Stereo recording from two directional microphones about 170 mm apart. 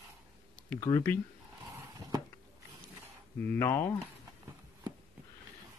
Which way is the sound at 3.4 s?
15° left (ahead or behind).